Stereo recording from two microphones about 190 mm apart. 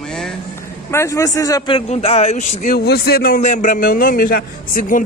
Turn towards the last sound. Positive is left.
turn(degrees=50)  # may be behind; listen again after turning